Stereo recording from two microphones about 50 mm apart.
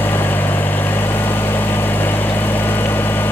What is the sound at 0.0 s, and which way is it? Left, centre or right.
Vehicle, left.